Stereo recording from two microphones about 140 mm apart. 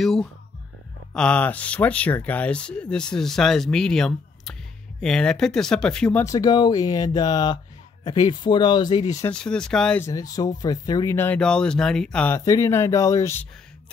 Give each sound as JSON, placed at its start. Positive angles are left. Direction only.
{"t": 1.1, "sound": "speech", "side_deg": 5}
{"t": 6.2, "sound": "speech", "side_deg": 25}
{"t": 9.3, "sound": "speech", "side_deg": 5}
{"t": 10.0, "sound": "speech", "side_deg": 25}
{"t": 11.1, "sound": "speech", "side_deg": 10}
{"t": 12.4, "sound": "speech", "side_deg": 25}